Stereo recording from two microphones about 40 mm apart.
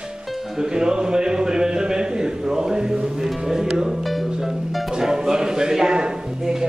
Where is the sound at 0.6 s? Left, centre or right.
Centre.